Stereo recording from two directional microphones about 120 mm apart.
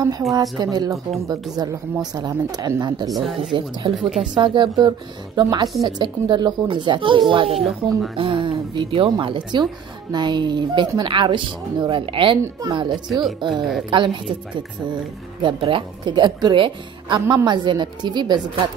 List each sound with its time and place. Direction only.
0.3 s speech: 30° right (ahead or behind)
3.1 s speech: centre (ahead or behind)
3.5 s a woman's voice: 45° right (ahead or behind)
15.4 s speech: 45° right (ahead or behind)